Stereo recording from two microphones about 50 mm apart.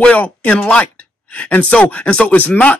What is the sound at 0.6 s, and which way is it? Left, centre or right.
Speech, left.